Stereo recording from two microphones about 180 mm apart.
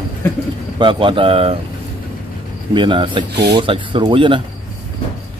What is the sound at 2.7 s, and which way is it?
Speech, 25° right (ahead or behind).